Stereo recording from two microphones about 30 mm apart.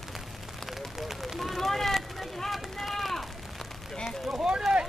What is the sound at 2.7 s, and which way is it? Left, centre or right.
Run, centre.